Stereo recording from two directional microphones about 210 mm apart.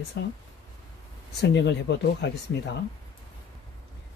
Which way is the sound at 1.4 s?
55° left (ahead or behind).